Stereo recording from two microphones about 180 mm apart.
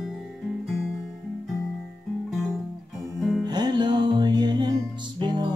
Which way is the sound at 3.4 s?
25° right (ahead or behind).